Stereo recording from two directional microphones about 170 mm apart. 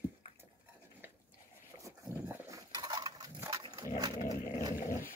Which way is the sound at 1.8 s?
15° right (ahead or behind).